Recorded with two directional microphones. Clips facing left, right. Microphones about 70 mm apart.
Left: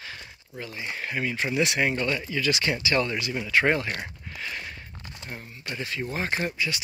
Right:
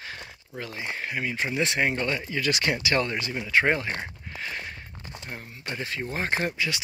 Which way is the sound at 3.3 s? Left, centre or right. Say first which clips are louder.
Even; right.